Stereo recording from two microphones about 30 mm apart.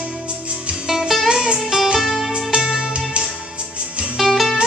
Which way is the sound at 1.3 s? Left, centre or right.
Right.